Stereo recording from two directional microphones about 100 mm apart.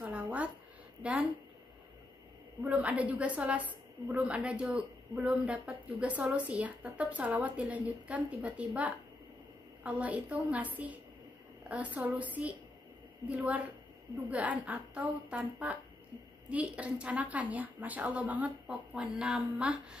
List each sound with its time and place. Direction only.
0.0 s a sound: 15° right (ahead or behind)
1.0 s a woman's voice: 15° right (ahead or behind)
2.6 s a woman's voice: 15° right (ahead or behind)